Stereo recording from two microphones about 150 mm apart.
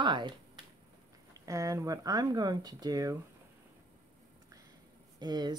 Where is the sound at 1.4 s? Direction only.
20° right (ahead or behind).